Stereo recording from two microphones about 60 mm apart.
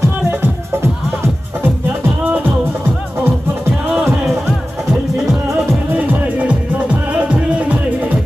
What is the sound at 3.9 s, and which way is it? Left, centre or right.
Music, centre.